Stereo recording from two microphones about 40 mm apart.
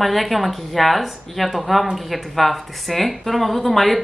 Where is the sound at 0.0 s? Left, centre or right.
Centre.